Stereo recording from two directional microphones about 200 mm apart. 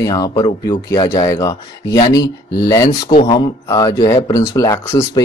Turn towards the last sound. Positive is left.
turn(degrees=15)  # may be behind; listen again after turning